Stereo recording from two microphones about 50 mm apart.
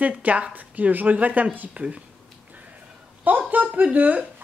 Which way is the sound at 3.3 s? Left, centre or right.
Right.